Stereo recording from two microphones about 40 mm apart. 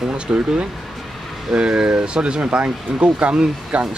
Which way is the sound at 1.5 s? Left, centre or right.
Right.